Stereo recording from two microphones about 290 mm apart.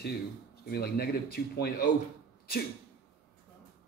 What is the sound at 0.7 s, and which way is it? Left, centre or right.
Speech, left.